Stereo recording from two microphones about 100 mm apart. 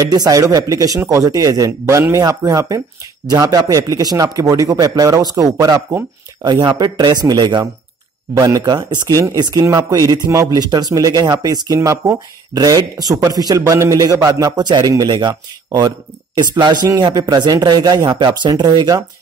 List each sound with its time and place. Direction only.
0.0 s speech: 40° right (ahead or behind)
6.4 s speech: 45° right (ahead or behind)